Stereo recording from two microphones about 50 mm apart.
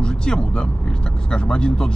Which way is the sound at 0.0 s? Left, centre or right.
Centre.